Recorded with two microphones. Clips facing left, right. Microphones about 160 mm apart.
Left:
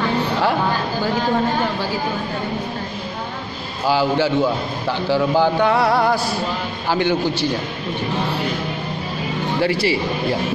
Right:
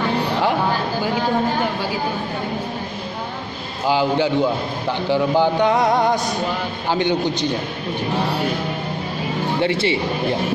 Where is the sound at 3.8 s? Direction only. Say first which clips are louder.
Even; 20° right (ahead or behind).